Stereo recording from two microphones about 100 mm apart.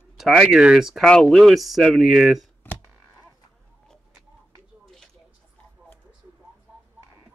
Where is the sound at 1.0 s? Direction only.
5° left (ahead or behind).